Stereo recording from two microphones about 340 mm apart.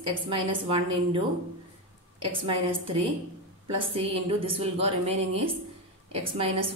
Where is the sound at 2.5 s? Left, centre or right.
Centre.